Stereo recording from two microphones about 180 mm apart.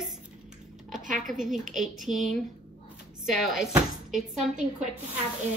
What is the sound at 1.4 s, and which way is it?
Speech, 45° right (ahead or behind).